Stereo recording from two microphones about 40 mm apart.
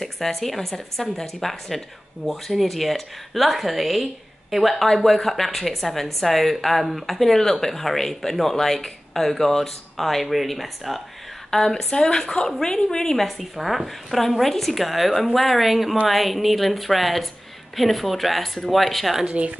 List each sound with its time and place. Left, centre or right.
0.0 s speech: centre
11.5 s speech: centre
19.2 s speech: right